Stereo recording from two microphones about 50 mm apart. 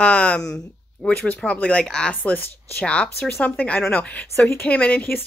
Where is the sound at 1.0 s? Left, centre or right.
Left.